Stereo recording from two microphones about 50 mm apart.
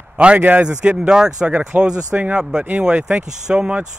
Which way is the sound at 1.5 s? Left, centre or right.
Right.